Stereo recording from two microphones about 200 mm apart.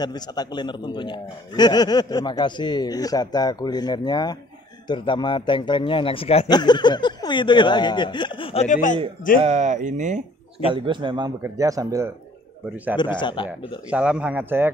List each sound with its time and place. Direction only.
0.0 s a man's voice: 20° left (ahead or behind); by 8.9 s 40° left (ahead or behind)
9.4 s speech: 35° right (ahead or behind)
10.7 s a man's voice: 25° right (ahead or behind)
12.9 s a man's voice: 20° left (ahead or behind)
13.8 s speech: 5° right (ahead or behind)